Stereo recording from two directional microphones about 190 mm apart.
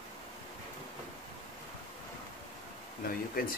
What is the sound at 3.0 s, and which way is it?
Speech, 50° left (ahead or behind).